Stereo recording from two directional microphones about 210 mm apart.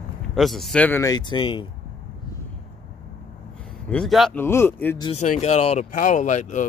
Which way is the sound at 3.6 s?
5° left (ahead or behind).